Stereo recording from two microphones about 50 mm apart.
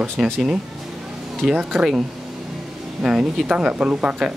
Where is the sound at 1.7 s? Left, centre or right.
Centre.